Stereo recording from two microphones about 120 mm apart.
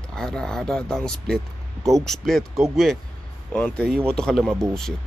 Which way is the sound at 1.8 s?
25° right (ahead or behind).